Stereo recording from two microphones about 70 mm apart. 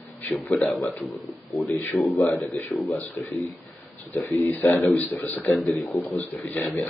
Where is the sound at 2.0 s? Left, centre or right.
Centre.